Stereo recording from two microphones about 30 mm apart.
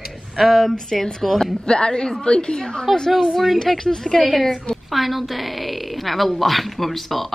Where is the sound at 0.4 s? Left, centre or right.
Centre.